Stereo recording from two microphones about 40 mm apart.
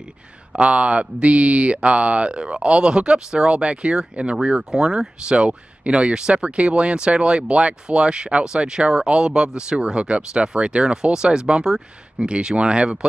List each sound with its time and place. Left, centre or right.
0.6 s speech: right
4.4 s speech: centre
5.2 s speech: right